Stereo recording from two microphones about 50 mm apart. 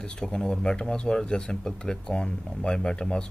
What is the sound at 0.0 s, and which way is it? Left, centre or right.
Speech, centre.